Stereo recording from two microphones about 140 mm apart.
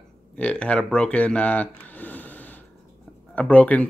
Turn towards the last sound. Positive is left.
turn(degrees=10)  # may be behind; listen again after turning